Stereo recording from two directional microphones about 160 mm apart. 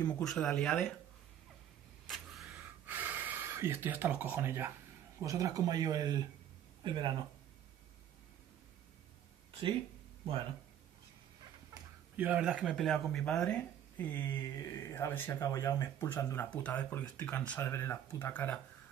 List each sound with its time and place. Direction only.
0.0 s speech: 5° left (ahead or behind)
2.0 s a sound: centre (ahead or behind)
2.4 s gasp: 10° right (ahead or behind)
5.2 s speech: 20° right (ahead or behind)
11.7 s fowl: 25° right (ahead or behind)
12.2 s speech: 10° right (ahead or behind); by 18.6 s 10° left (ahead or behind)